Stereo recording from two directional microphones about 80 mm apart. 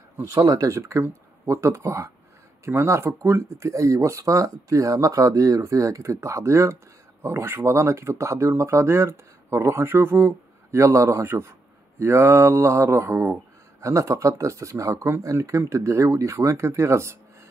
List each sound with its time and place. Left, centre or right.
0.2 s speech: right